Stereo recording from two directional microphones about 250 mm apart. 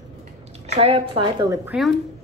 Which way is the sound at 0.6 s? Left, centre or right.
Right.